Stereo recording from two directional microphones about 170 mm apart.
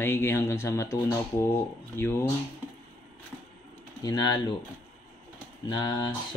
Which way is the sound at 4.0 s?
20° left (ahead or behind).